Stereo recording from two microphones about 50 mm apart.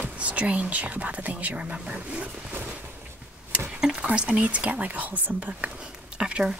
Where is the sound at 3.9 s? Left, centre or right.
Right.